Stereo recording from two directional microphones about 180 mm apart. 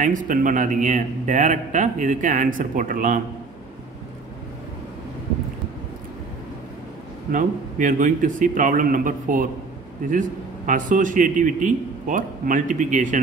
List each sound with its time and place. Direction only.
0.0 s a man's voice: 45° right (ahead or behind)
7.3 s a man's voice: 45° right (ahead or behind)
10.7 s a man's voice: 45° right (ahead or behind)